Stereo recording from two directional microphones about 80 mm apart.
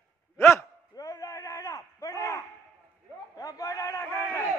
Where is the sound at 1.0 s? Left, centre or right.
Left.